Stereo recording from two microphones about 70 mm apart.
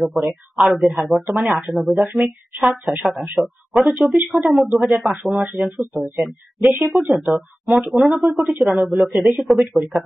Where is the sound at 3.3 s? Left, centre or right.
Centre.